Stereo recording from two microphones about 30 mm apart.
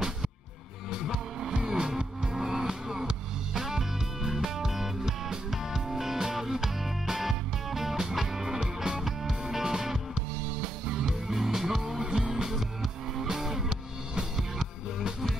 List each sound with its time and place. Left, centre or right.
1.6 s music: right
9.0 s music: centre